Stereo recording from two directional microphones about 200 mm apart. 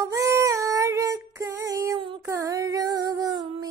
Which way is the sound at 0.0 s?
15° right (ahead or behind).